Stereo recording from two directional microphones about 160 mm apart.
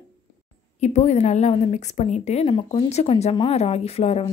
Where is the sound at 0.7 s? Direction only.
45° left (ahead or behind).